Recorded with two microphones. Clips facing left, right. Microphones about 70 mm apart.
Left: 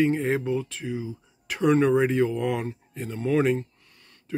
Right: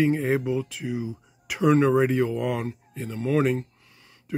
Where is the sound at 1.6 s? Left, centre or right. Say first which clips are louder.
Right 1 dB; centre.